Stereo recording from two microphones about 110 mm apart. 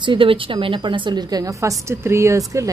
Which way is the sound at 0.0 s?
50° right (ahead or behind).